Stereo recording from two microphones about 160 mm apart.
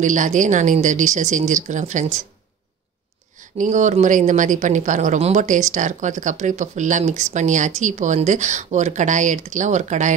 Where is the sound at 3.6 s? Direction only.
50° right (ahead or behind).